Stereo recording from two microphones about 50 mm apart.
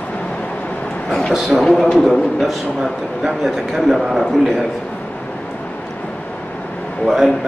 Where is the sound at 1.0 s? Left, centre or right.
Centre.